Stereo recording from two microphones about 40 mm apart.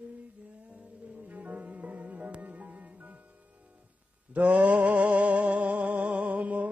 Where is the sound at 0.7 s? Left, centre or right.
Right.